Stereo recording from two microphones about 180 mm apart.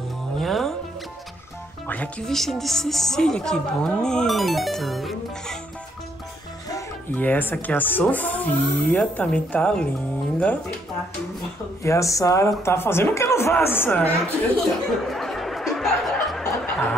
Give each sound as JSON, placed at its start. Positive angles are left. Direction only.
{"t": 0.4, "sound": "music", "side_deg": 0}
{"t": 1.9, "sound": "speech", "side_deg": 5}
{"t": 6.7, "sound": "speech", "side_deg": 10}
{"t": 11.8, "sound": "speech", "side_deg": 15}